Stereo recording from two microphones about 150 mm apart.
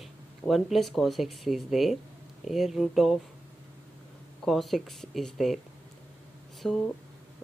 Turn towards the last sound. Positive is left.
turn(degrees=0)  # may be behind; listen again after turning